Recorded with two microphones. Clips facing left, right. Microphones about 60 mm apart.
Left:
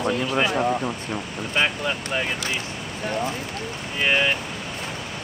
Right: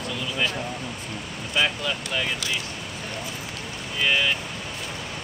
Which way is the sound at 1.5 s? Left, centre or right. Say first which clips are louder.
Left 1 dB; left.